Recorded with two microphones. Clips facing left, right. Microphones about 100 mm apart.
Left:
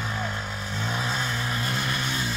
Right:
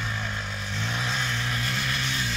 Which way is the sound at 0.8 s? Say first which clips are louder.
Left 2 dB; 40° left (ahead or behind).